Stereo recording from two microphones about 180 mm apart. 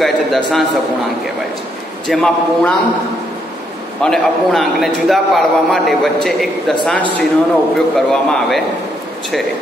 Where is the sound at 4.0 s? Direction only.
Centre (ahead or behind).